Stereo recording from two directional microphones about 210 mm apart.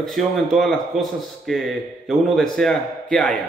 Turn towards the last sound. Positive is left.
turn(degrees=0)  # may be behind; listen again after turning